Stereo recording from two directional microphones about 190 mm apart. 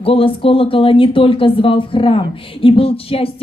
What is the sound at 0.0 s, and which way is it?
Speech, 30° left (ahead or behind).